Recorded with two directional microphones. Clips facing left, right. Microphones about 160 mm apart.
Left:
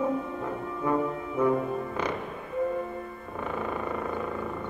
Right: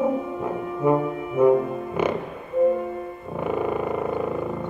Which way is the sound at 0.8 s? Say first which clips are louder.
Right 6 dB; 20° right (ahead or behind).